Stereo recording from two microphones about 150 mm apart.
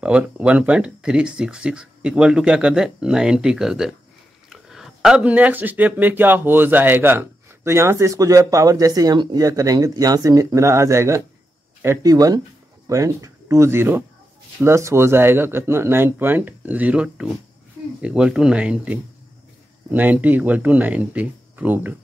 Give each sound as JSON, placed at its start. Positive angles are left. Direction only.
{"t": 0.0, "sound": "speech", "side_deg": -10}